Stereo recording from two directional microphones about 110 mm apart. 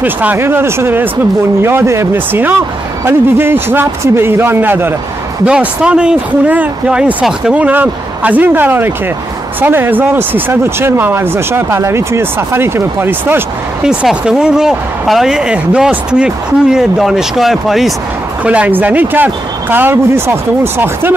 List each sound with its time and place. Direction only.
0.0 s speech: 15° right (ahead or behind)
13.8 s a woman's voice: 5° right (ahead or behind)
18.4 s speech: 10° right (ahead or behind)